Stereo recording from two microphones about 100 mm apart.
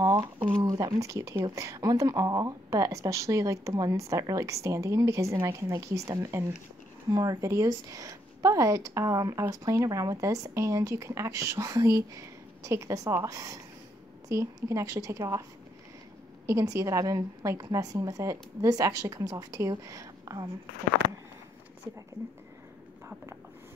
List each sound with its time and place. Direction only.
0.0 s a sound: 40° right (ahead or behind)
0.6 s a woman's voice: 40° right (ahead or behind)
16.4 s a woman's voice: 30° right (ahead or behind)